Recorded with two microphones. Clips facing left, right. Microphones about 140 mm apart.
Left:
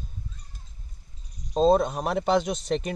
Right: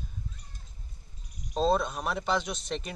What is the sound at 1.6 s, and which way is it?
Speech, 40° left (ahead or behind).